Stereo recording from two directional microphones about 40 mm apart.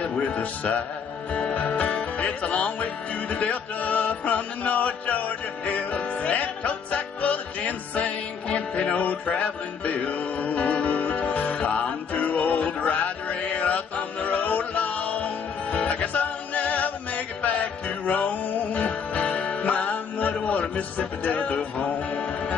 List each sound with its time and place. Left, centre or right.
0.0 s music: left